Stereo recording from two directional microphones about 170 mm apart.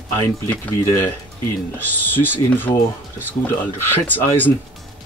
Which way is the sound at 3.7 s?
10° left (ahead or behind).